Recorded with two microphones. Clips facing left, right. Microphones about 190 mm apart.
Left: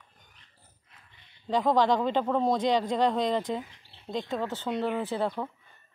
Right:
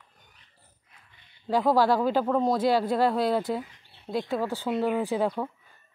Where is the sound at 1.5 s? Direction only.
5° right (ahead or behind).